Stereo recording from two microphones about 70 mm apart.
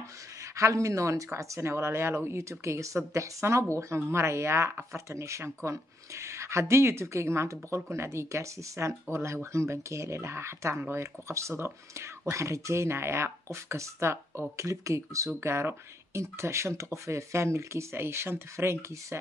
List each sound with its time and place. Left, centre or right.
0.6 s speech: right